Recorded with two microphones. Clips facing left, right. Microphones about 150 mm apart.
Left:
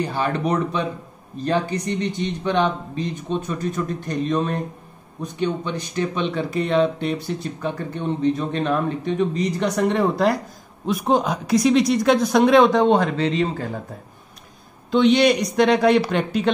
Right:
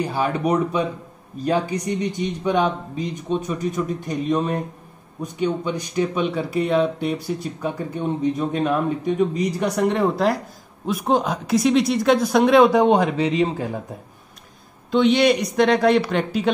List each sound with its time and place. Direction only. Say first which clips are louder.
0.0 s speech: right 1 dB; 10° right (ahead or behind)
14.9 s speech: left 1 dB; centre (ahead or behind)